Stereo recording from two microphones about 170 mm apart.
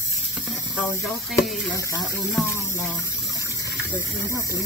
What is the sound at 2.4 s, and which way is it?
Speech, 15° left (ahead or behind).